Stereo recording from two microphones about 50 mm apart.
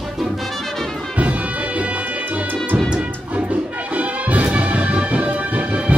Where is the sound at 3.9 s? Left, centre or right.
Right.